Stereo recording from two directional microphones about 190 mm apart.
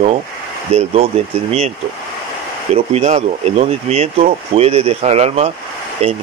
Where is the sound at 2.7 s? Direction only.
35° right (ahead or behind).